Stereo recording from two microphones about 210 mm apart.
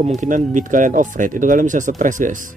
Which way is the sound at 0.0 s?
35° right (ahead or behind).